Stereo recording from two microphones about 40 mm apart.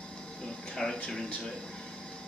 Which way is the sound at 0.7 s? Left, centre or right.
Centre.